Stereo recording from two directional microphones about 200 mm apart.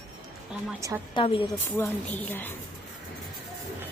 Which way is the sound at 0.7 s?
15° right (ahead or behind).